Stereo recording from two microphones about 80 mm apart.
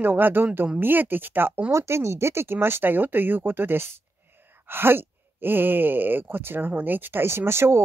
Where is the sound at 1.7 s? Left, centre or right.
Right.